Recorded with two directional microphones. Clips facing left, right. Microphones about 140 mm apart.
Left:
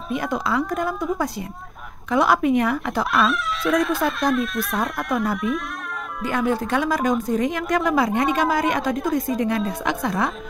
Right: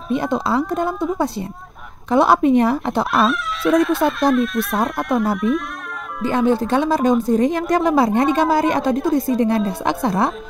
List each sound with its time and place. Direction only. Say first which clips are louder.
0.1 s speech: right 5 dB; 30° right (ahead or behind)
2.0 s speech: right 4 dB; 30° right (ahead or behind)
3.3 s speech: right 4 dB; centre (ahead or behind)
6.2 s a woman's voice: right 5 dB; 25° right (ahead or behind)